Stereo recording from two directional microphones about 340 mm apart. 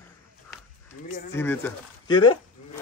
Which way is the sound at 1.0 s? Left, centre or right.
Left.